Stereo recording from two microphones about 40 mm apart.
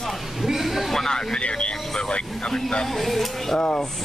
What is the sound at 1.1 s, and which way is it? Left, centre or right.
Speech, left.